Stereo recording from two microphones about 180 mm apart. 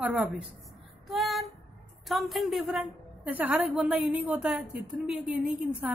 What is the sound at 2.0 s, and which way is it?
A woman's voice, centre (ahead or behind).